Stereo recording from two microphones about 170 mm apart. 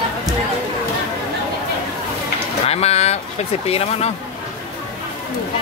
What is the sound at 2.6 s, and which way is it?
Speech, 35° left (ahead or behind).